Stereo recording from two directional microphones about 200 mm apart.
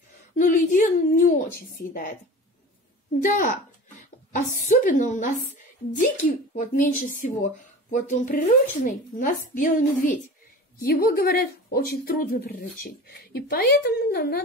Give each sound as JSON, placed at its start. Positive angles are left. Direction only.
{"t": 0.4, "sound": "speech", "side_deg": 40}
{"t": 3.2, "sound": "speech", "side_deg": 40}